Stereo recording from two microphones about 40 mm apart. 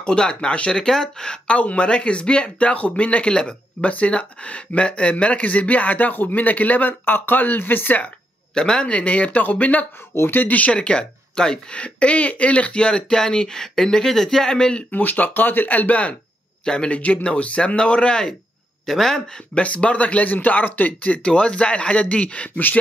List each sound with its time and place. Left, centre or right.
0.0 s speech: left
1.5 s speech: left
2.7 s speech: left
3.3 s speech: left
8.5 s speech: centre
8.8 s speech: left
9.9 s speech: left
10.5 s speech: left; by 11.7 s centre
11.7 s speech: left
14.9 s speech: left
16.6 s speech: left
18.9 s speech: centre
19.6 s speech: left
21.3 s speech: left